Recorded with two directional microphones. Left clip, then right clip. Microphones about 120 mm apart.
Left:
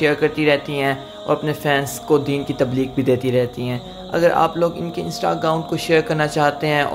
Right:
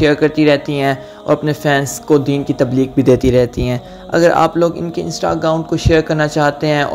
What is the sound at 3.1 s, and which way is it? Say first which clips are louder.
Speech: right 7 dB; 50° right (ahead or behind).